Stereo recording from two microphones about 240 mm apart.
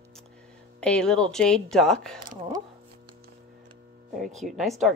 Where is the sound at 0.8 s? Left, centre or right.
Centre.